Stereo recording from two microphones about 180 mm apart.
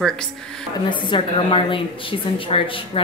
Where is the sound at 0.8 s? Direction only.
25° left (ahead or behind).